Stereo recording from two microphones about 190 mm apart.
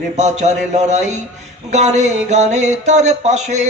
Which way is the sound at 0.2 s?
35° right (ahead or behind).